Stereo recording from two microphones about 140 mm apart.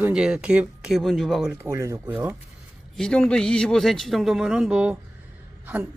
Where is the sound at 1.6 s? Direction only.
20° right (ahead or behind).